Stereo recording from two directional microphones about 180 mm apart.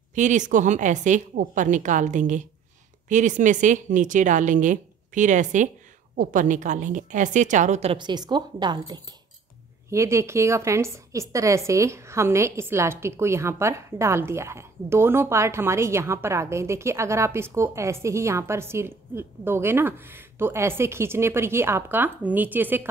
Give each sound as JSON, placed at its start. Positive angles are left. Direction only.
{"t": 0.1, "sound": "a woman's voice", "side_deg": -45}